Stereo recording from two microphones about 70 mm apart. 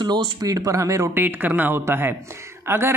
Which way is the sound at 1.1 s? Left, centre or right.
Right.